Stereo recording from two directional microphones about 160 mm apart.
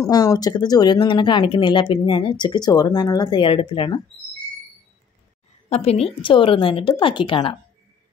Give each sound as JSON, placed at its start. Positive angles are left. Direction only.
{"t": 0.0, "sound": "speech", "side_deg": 20}
{"t": 5.7, "sound": "a woman's voice", "side_deg": 40}